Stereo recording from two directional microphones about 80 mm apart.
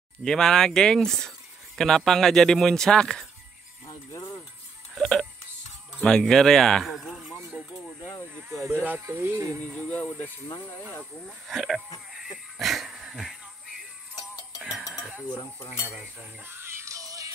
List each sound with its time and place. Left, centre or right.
0.2 s speech: centre
4.9 s music: centre
6.0 s speech: centre
9.1 s speech: right
9.5 s speech: centre
11.4 s speech: centre
12.5 s music: centre
15.6 s cutlery: left
16.4 s music: right